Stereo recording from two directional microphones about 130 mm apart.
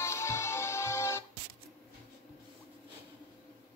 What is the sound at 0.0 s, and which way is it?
Music, 20° left (ahead or behind).